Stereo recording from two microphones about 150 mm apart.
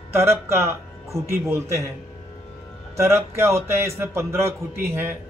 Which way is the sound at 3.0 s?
15° right (ahead or behind).